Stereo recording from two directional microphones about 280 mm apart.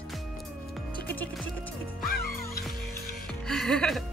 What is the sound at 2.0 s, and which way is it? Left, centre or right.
Music, left.